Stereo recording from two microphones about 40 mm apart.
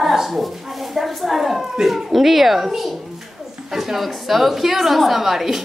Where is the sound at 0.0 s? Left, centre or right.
Centre.